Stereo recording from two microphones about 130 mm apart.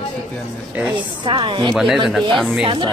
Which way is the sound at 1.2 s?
40° right (ahead or behind).